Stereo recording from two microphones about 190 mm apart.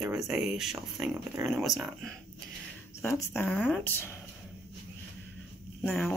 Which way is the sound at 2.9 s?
15° left (ahead or behind).